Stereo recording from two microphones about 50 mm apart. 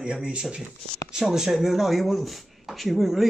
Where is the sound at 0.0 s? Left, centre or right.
Centre.